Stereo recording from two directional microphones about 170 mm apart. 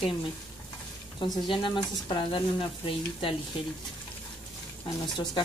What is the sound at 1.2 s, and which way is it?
Speech, 25° left (ahead or behind).